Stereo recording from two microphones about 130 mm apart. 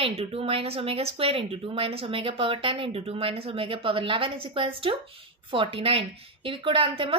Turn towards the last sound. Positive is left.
turn(degrees=-40)  # may be behind; listen again after turning